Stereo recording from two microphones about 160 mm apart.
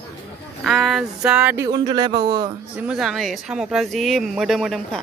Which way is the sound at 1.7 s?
25° right (ahead or behind).